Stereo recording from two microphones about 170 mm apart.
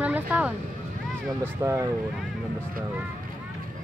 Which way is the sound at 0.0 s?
10° right (ahead or behind).